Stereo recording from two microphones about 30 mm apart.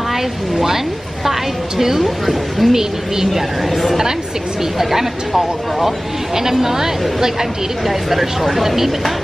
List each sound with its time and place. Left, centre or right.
0.1 s a woman's voice: centre
1.8 s a woman's voice: centre
2.0 s speech: centre
2.7 s a woman's voice: centre
5.3 s speech: centre
6.3 s a woman's voice: centre
7.8 s speech: centre